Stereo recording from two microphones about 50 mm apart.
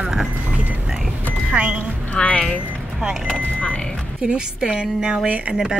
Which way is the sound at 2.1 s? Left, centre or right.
Centre.